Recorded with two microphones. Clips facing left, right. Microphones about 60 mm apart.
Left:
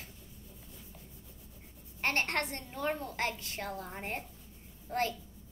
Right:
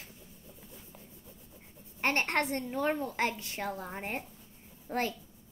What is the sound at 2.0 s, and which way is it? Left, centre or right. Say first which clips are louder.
A child's voice: right 3 dB; centre.